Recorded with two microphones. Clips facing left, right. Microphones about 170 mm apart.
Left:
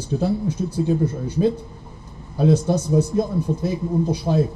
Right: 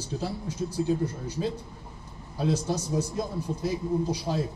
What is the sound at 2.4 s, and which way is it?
Speech, 55° left (ahead or behind).